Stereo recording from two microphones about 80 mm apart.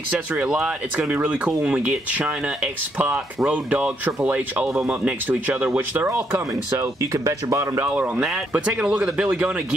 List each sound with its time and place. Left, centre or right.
0.1 s speech: centre
4.6 s speech: centre; by 6.2 s right
6.3 s speech: right
7.9 s speech: centre